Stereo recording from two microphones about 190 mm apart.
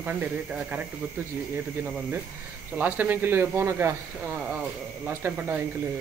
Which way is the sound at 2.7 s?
10° right (ahead or behind).